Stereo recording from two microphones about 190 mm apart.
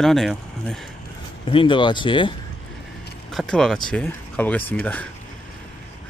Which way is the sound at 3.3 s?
5° left (ahead or behind).